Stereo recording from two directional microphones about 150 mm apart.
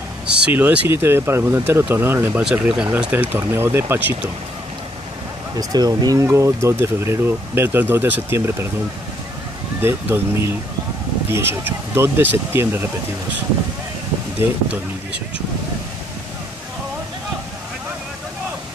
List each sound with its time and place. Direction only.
0.4 s speech: 10° right (ahead or behind)
5.6 s speech: 25° right (ahead or behind)
9.8 s speech: 15° right (ahead or behind)